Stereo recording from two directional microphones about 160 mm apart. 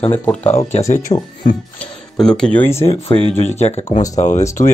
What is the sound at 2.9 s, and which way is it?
Speech, 35° left (ahead or behind).